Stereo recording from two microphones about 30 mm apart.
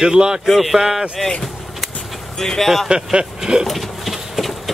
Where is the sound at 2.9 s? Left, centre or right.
Right.